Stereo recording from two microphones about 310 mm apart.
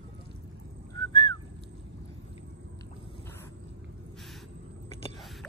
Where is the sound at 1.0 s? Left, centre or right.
Centre.